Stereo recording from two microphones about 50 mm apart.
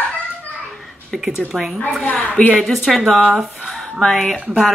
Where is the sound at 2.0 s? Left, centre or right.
Left.